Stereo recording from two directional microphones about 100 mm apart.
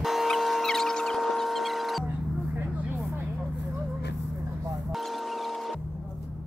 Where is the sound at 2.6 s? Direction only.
20° right (ahead or behind).